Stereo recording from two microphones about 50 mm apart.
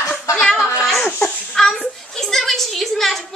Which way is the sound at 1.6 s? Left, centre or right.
Centre.